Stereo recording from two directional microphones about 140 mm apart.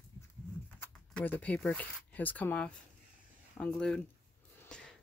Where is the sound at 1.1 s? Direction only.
10° left (ahead or behind).